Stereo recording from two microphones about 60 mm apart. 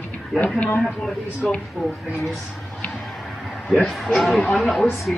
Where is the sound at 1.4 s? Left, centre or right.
Centre.